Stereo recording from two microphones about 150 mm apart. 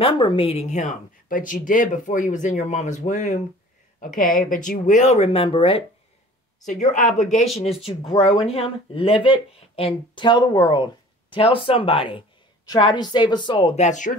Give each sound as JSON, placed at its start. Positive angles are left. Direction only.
{"t": 0.0, "sound": "speech", "side_deg": 35}
{"t": 4.0, "sound": "speech", "side_deg": 65}
{"t": 6.6, "sound": "speech", "side_deg": 55}
{"t": 13.7, "sound": "speech", "side_deg": 55}